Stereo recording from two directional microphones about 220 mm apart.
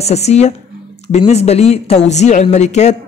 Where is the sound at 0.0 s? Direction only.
30° left (ahead or behind).